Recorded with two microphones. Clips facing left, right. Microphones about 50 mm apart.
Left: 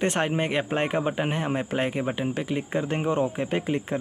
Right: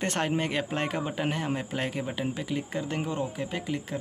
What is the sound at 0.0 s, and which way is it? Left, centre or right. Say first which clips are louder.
A man's voice: left 3 dB; left.